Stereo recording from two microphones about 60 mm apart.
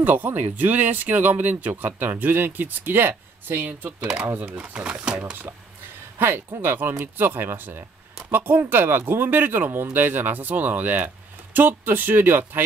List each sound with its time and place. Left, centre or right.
0.0 s speech: right
4.0 s speech: centre
5.1 s speech: right